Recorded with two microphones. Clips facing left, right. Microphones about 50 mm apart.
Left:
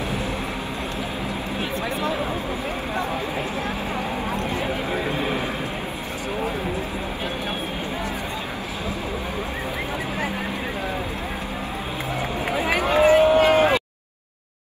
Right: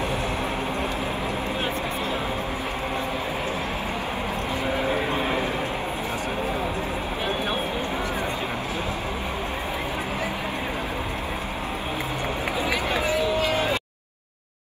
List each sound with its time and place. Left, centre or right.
12.5 s run: left